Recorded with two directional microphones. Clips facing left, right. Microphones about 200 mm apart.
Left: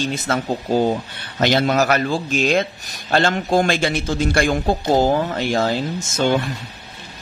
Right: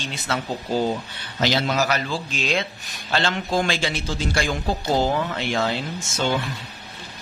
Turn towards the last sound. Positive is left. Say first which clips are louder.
# left 5 dB
turn(degrees=50)  # may be behind; listen again after turning